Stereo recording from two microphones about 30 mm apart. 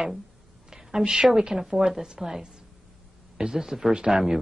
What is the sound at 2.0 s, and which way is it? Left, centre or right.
A woman's voice, centre.